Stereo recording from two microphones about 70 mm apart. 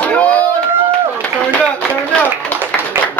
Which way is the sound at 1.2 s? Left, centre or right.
Centre.